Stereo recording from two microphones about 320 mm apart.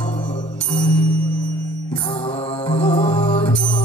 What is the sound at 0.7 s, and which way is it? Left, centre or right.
Music, centre.